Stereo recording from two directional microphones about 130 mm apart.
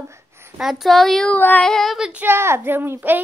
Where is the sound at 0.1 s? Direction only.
20° right (ahead or behind).